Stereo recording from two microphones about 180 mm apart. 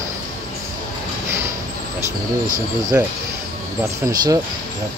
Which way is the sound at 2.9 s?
10° right (ahead or behind).